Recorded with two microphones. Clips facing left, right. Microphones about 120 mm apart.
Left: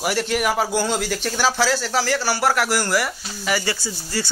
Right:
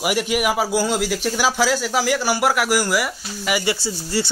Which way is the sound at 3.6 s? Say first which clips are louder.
Right 4 dB; 25° right (ahead or behind).